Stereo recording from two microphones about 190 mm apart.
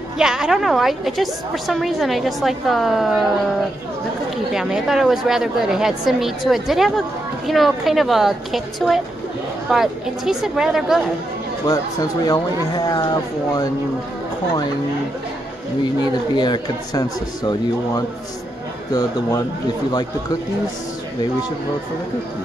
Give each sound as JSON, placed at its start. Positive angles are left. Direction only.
{"t": 0.2, "sound": "a woman's voice", "side_deg": -5}
{"t": 4.5, "sound": "a woman's voice", "side_deg": -5}
{"t": 11.6, "sound": "speech", "side_deg": 20}
{"t": 15.8, "sound": "speech", "side_deg": 20}